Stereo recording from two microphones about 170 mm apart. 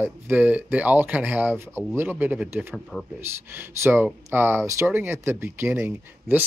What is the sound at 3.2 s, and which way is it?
Speech, 15° right (ahead or behind).